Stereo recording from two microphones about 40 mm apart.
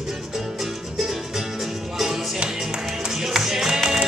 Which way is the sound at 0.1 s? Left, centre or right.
Centre.